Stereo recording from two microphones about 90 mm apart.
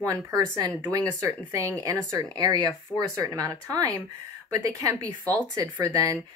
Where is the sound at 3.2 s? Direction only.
40° right (ahead or behind).